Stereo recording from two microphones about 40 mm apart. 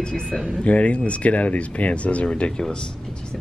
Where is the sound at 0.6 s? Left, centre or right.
Left.